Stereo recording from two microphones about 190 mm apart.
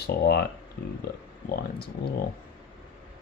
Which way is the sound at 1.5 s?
55° left (ahead or behind).